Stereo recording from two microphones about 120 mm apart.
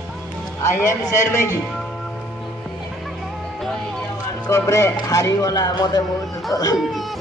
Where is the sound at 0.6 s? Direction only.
20° left (ahead or behind).